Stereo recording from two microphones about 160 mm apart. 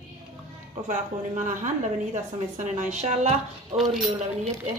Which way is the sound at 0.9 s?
50° right (ahead or behind).